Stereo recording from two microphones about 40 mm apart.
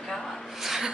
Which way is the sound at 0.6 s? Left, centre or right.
Centre.